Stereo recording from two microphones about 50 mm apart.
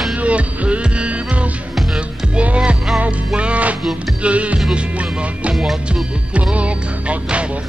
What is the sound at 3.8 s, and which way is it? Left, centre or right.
Music, centre.